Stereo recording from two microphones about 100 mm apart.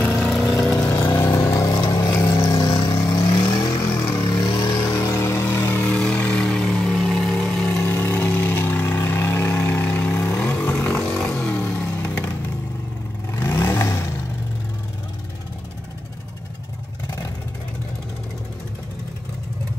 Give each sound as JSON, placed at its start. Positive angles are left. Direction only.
{"t": 0.0, "sound": "vehicle", "side_deg": 15}
{"t": 0.7, "sound": "vehicle", "side_deg": 25}
{"t": 1.7, "sound": "vehicle", "side_deg": 45}
{"t": 3.1, "sound": "vehicle", "side_deg": 35}
{"t": 3.7, "sound": "vehicle", "side_deg": 25}
{"t": 4.3, "sound": "vehicle", "side_deg": 45}
{"t": 4.9, "sound": "vehicle", "side_deg": 30}
{"t": 7.3, "sound": "vehicle", "side_deg": 15}
{"t": 13.6, "sound": "vehicle", "side_deg": 30}